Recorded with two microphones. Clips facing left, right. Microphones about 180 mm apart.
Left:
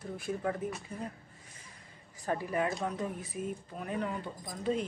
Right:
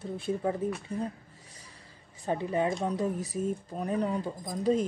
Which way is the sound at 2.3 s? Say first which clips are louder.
Right 3 dB; 25° right (ahead or behind).